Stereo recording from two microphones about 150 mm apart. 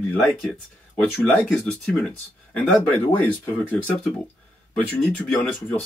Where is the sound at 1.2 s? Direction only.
10° left (ahead or behind).